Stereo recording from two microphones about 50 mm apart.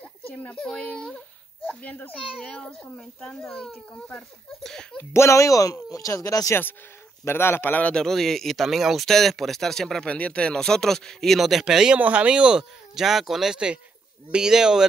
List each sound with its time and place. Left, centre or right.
0.0 s a sound: left
1.7 s a child's voice: left
2.1 s a child's voice: centre
5.1 s speech: left
5.9 s speech: left
7.2 s speech: left
7.9 s speech: centre
10.0 s speech: left; by 11.6 s centre
11.6 s speech: centre
12.0 s speech: right
12.9 s speech: centre